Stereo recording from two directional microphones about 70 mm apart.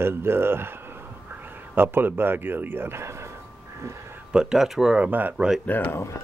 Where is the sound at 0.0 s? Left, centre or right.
Right.